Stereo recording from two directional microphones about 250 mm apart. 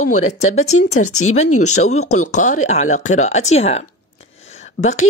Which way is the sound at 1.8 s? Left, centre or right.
Left.